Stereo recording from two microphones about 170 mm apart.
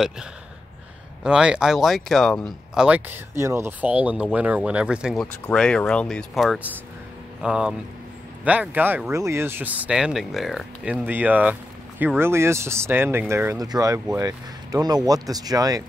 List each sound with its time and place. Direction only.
1.2 s speech: 5° right (ahead or behind); by 15.8 s 20° right (ahead or behind)